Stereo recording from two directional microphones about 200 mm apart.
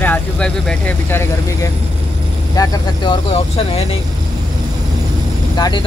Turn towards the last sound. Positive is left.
turn(degrees=20)  # may be behind; listen again after turning